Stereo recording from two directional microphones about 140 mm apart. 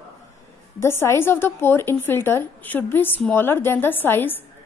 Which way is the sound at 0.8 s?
15° left (ahead or behind).